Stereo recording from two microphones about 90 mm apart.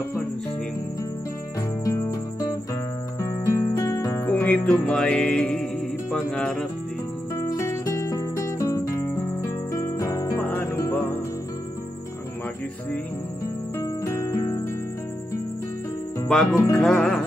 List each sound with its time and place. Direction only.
1.9 s music: 35° left (ahead or behind)
3.2 s music: 30° left (ahead or behind)
4.3 s music: 20° left (ahead or behind)
7.3 s music: 35° left (ahead or behind)
10.3 s music: 20° left (ahead or behind)
13.7 s music: 35° left (ahead or behind)
16.3 s music: 5° left (ahead or behind)